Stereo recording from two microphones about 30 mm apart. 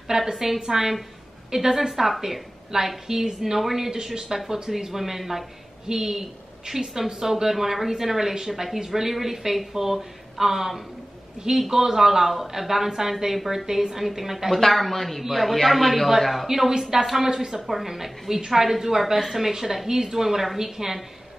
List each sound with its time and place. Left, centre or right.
0.1 s a woman's voice: right
0.6 s a woman's voice: centre
2.7 s a woman's voice: right
3.9 s a woman's voice: right
11.4 s a woman's voice: right; by 14.4 s centre
14.6 s speech: centre
16.4 s a woman's voice: centre